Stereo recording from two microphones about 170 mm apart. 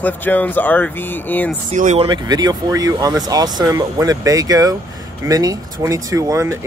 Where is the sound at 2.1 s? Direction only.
25° right (ahead or behind).